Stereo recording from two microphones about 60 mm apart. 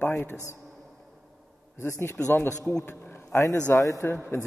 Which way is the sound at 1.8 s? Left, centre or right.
Left.